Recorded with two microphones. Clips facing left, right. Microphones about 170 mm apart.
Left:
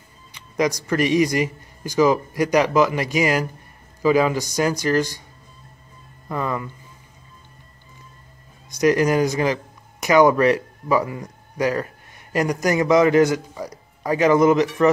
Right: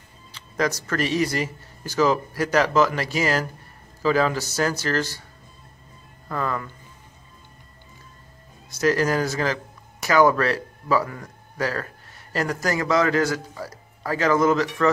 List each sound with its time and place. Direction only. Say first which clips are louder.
0.3 s speech: left 3 dB; 15° left (ahead or behind)
6.2 s speech: left 2 dB; 15° left (ahead or behind)
8.7 s speech: left 4 dB; 15° left (ahead or behind)